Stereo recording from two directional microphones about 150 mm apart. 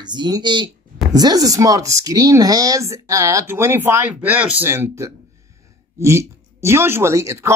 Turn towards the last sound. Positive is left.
turn(degrees=-20)  # may be behind; listen again after turning